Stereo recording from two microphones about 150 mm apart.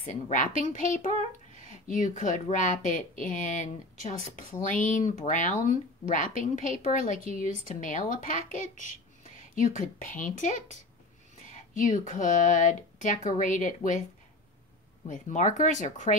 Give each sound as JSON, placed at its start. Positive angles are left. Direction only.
{"t": 0.0, "sound": "speech", "side_deg": 60}
{"t": 1.1, "sound": "a sound", "side_deg": -45}
{"t": 1.7, "sound": "speech", "side_deg": 55}
{"t": 8.5, "sound": "a sound", "side_deg": 55}
{"t": 9.8, "sound": "speech", "side_deg": 60}
{"t": 15.0, "sound": "speech", "side_deg": 60}